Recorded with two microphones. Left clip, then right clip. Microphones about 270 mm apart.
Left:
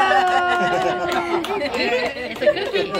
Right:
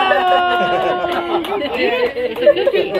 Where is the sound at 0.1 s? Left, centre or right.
Centre.